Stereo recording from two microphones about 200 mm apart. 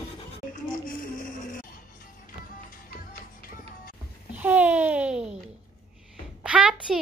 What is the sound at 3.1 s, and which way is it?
Music, 45° left (ahead or behind).